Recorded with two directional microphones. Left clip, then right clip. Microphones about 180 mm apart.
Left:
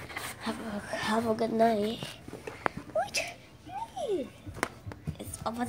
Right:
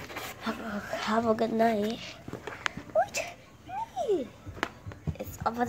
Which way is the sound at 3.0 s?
10° right (ahead or behind).